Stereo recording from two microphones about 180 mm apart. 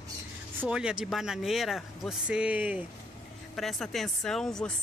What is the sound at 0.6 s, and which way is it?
Speech, 5° right (ahead or behind).